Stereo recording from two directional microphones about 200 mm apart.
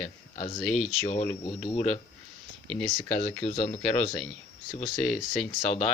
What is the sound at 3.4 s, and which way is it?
Speech, 30° left (ahead or behind).